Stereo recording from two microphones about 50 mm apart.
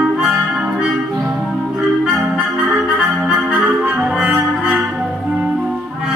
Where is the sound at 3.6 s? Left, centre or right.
Right.